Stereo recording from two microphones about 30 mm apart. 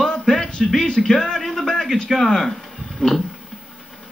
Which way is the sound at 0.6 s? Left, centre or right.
Centre.